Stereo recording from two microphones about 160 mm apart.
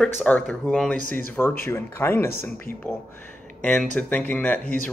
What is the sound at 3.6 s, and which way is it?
Speech, 5° left (ahead or behind).